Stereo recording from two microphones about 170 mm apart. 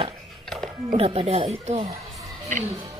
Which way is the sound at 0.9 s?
35° right (ahead or behind).